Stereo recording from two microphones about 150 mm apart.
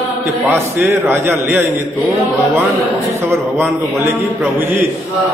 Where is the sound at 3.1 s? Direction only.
15° right (ahead or behind).